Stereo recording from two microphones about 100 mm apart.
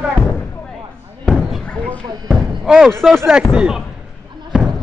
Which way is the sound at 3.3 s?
10° right (ahead or behind).